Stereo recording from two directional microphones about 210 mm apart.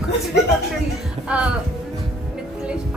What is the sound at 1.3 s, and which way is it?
Speech, 5° right (ahead or behind).